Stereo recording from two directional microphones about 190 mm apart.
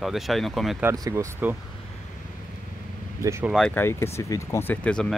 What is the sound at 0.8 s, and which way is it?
Speech, 15° right (ahead or behind).